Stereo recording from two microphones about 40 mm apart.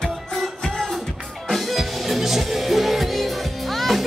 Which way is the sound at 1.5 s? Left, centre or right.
Centre.